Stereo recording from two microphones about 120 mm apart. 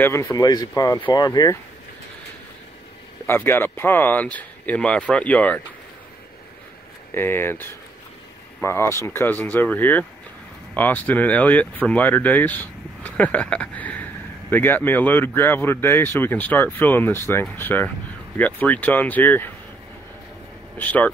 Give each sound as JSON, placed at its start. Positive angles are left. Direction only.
{"t": 0.0, "sound": "speech", "side_deg": 25}
{"t": 3.3, "sound": "speech", "side_deg": 20}
{"t": 7.2, "sound": "speech", "side_deg": 20}
{"t": 8.6, "sound": "speech", "side_deg": 20}
{"t": 20.7, "sound": "speech", "side_deg": 15}